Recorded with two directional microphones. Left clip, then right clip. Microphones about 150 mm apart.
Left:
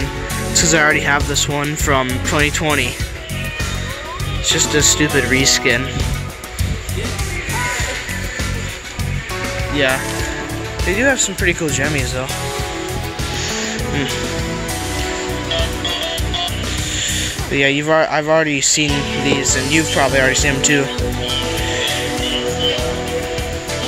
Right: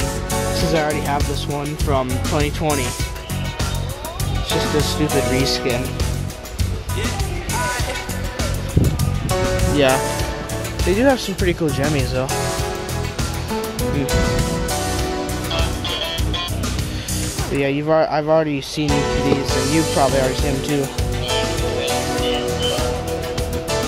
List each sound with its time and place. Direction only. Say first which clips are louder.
0.7 s speech: left 8 dB; 5° left (ahead or behind)
4.6 s speech: left 4 dB; 5° left (ahead or behind)
10.9 s speech: left 1 dB; 25° right (ahead or behind)
17.5 s speech: left 4 dB; centre (ahead or behind)